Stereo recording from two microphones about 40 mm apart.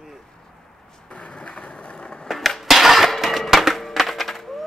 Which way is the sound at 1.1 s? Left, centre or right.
Left.